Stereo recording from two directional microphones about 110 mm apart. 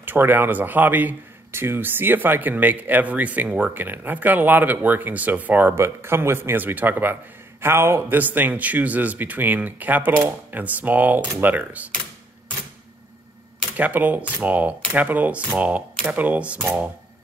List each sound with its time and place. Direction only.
0.0 s speech: 20° right (ahead or behind)
13.7 s speech: 15° right (ahead or behind)